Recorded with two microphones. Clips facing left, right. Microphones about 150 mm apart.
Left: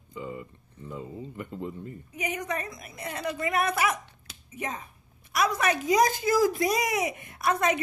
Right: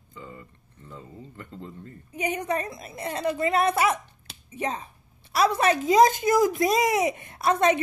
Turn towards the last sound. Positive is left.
turn(degrees=-30)  # may be behind; listen again after turning